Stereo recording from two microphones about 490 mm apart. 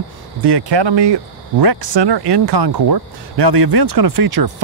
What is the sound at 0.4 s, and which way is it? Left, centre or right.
Speech, right.